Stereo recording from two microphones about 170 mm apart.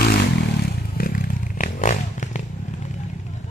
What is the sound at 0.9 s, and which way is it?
Motorcycle, 55° left (ahead or behind).